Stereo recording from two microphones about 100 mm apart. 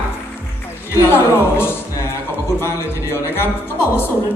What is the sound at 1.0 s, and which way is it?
Music, 25° left (ahead or behind).